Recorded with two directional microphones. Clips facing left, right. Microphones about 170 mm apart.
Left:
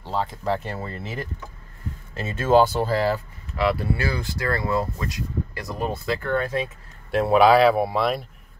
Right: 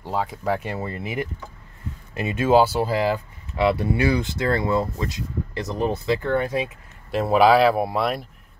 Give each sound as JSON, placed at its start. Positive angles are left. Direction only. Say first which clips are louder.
{"t": 0.0, "sound": "speech", "louder": "right 1 dB", "side_deg": -10}
{"t": 3.5, "sound": "speech", "louder": "right 3 dB", "side_deg": -25}
{"t": 7.1, "sound": "a man's voice", "louder": "even", "side_deg": 0}